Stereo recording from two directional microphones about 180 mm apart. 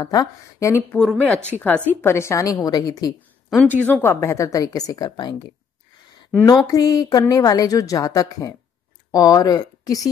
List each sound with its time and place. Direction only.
0.0 s a woman's voice: 20° left (ahead or behind)
0.9 s a woman's voice: 5° left (ahead or behind); by 3.1 s 20° left (ahead or behind)
3.4 s a woman's voice: 5° left (ahead or behind); by 5.3 s 20° left (ahead or behind)
6.4 s a woman's voice: 20° left (ahead or behind)